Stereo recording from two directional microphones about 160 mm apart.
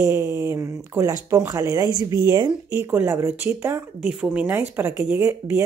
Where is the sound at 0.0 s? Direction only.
15° right (ahead or behind).